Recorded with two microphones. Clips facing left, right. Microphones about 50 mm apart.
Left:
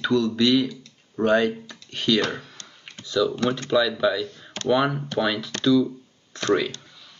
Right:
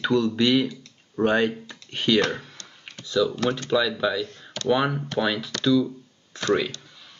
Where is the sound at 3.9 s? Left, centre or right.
Centre.